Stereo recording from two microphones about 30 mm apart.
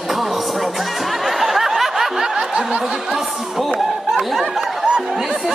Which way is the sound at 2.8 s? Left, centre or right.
Centre.